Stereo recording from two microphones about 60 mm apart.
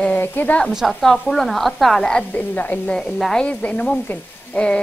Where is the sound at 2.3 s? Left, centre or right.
Left.